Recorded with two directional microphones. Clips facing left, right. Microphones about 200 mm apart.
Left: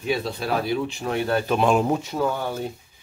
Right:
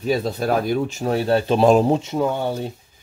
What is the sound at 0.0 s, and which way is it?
Speech, 40° right (ahead or behind).